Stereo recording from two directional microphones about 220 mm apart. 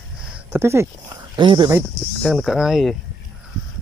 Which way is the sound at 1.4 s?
20° right (ahead or behind).